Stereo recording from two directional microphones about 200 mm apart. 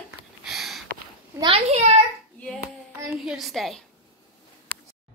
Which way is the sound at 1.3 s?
30° right (ahead or behind).